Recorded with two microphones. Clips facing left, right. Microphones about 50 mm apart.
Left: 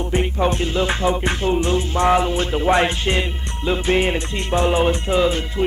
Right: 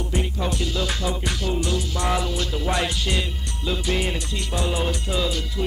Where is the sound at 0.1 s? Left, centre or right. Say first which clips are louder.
Left 8 dB; left.